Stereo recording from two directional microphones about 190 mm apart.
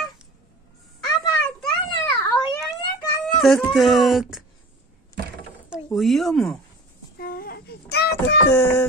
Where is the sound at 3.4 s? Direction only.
Centre (ahead or behind).